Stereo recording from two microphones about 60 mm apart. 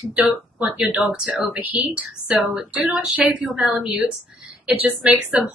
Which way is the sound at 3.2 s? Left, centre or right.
Centre.